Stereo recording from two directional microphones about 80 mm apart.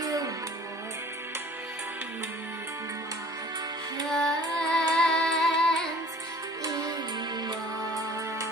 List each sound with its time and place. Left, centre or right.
0.0 s music: right
4.1 s carnatic music: centre
4.9 s music: centre
6.6 s music: right